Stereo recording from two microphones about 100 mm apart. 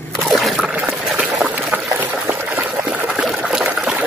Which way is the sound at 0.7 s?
15° right (ahead or behind).